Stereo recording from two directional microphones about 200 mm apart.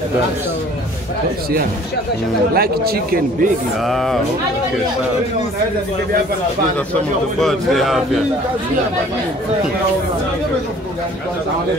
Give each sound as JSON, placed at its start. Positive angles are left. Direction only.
{"t": 2.5, "sound": "speech", "side_deg": -50}
{"t": 3.8, "sound": "a man's voice", "side_deg": 0}
{"t": 6.9, "sound": "a man's voice", "side_deg": 0}